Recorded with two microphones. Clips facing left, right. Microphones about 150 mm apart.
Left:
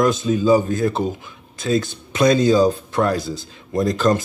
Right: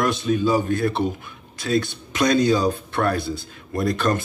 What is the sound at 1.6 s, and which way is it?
Speech, 25° left (ahead or behind).